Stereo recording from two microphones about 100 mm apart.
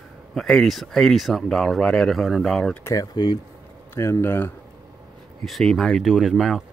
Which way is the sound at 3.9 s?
25° left (ahead or behind).